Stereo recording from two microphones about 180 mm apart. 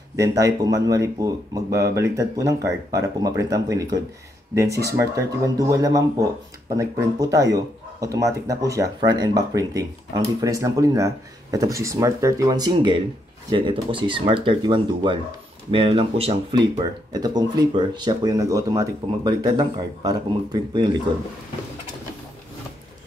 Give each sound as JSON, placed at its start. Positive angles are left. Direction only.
{"t": 0.1, "sound": "speech", "side_deg": -15}